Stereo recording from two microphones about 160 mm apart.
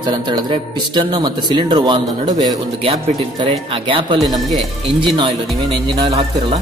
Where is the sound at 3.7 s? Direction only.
35° right (ahead or behind).